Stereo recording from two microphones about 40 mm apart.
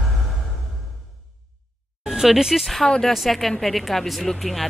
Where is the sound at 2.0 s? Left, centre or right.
Centre.